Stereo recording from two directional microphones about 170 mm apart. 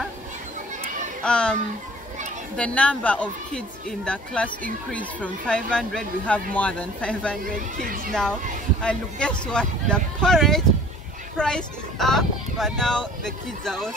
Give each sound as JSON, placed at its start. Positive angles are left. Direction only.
{"t": 1.2, "sound": "speech", "side_deg": 5}
{"t": 7.4, "sound": "speech", "side_deg": -55}
{"t": 8.1, "sound": "speech", "side_deg": 5}